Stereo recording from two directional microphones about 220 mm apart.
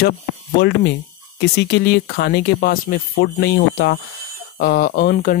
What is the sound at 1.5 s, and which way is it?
Speech, 50° left (ahead or behind).